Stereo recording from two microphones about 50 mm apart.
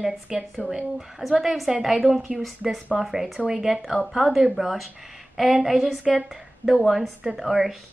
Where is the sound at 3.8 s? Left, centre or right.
Centre.